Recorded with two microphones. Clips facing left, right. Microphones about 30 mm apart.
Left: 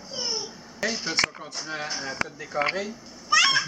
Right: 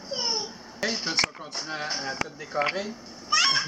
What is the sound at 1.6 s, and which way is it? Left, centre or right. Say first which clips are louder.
Speech: even; centre.